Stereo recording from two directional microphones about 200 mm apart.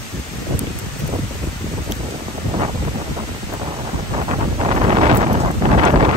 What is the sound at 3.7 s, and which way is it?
Wind noise, 30° right (ahead or behind).